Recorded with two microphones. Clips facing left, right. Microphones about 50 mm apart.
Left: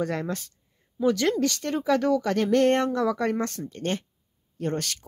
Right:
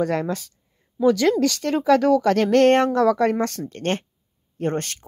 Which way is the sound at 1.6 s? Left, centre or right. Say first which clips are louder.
Right 6 dB; right.